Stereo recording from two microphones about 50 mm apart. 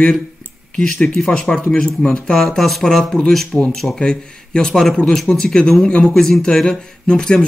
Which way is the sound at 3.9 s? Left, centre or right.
Centre.